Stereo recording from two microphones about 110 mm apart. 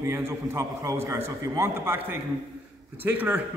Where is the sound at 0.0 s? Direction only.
25° right (ahead or behind).